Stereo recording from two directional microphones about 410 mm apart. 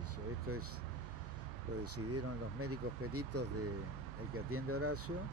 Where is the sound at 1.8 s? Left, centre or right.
Right.